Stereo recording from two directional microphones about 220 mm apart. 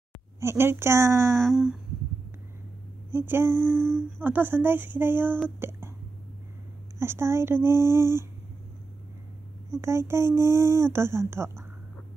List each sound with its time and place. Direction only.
0.4 s speech: 10° right (ahead or behind)
1.4 s humming: centre (ahead or behind)
3.1 s speech: 10° right (ahead or behind)
7.0 s speech: 10° right (ahead or behind)
9.7 s speech: 10° right (ahead or behind)